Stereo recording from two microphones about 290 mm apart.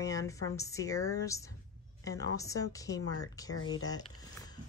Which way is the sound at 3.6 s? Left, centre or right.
Left.